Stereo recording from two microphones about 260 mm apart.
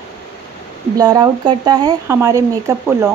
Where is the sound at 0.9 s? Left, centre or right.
Centre.